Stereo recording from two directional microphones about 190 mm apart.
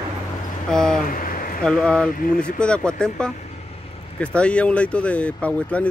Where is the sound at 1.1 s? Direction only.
45° left (ahead or behind).